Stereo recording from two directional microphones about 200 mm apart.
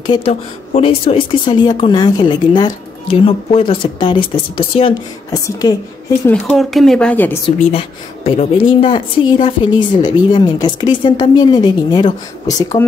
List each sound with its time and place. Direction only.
0.0 s speech: 25° left (ahead or behind)
6.4 s speech: centre (ahead or behind)
7.5 s speech: 30° left (ahead or behind)